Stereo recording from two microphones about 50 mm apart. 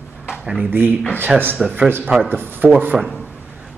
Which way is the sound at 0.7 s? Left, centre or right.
Right.